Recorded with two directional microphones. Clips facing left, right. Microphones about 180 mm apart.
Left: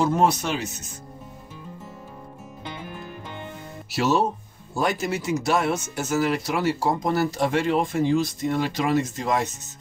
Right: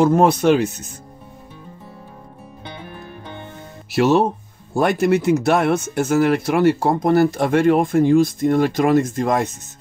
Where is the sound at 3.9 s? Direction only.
60° right (ahead or behind).